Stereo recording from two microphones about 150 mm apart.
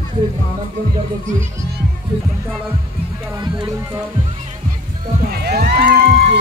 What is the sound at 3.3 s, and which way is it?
Speech, 30° right (ahead or behind).